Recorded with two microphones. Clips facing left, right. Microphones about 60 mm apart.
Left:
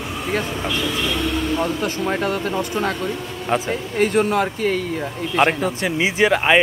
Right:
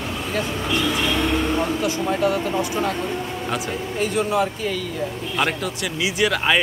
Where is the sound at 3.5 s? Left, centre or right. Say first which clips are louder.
Left 7 dB; left.